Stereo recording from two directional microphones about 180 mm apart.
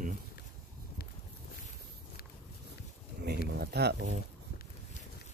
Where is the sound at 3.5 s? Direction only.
65° right (ahead or behind).